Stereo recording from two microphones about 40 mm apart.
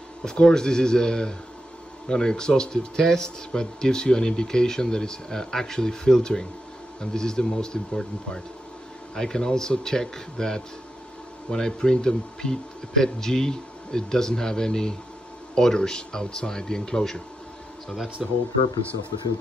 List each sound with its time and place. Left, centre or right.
0.2 s speech: centre
18.2 s speech: centre